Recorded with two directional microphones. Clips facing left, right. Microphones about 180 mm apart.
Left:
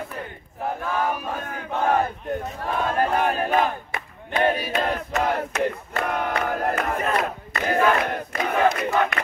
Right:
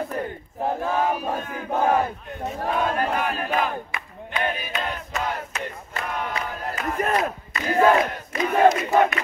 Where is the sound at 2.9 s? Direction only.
40° left (ahead or behind).